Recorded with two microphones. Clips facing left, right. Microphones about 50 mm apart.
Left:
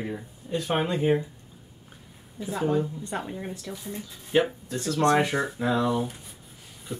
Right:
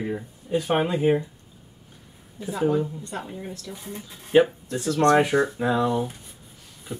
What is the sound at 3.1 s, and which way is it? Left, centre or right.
Speech, centre.